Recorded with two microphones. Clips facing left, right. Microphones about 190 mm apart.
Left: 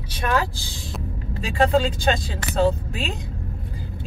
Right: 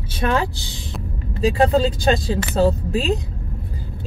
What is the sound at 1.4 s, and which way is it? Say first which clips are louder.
Speech: right 3 dB; 35° right (ahead or behind).